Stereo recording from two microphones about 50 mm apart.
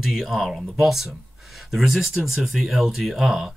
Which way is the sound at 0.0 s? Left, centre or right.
Centre.